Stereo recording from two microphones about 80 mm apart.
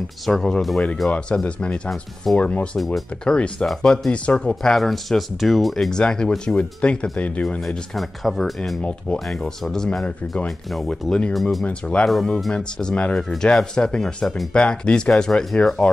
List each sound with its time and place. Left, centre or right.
0.2 s speech: centre
2.8 s speech: centre
3.3 s speech: centre
7.6 s speech: centre
10.0 s speech: centre
10.7 s speech: centre
12.1 s speech: centre
14.5 s speech: centre